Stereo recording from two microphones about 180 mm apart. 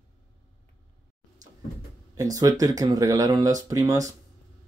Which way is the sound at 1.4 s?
20° right (ahead or behind).